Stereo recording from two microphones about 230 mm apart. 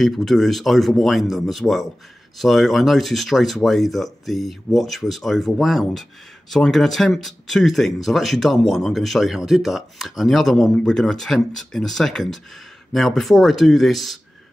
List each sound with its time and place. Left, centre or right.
0.0 s speech: centre